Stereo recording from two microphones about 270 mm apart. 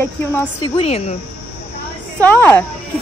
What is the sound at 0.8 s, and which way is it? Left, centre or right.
Speech, left.